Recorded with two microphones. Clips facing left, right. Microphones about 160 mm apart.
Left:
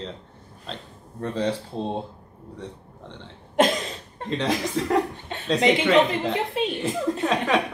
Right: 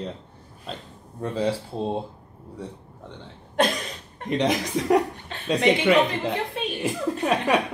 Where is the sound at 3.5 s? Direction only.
20° left (ahead or behind).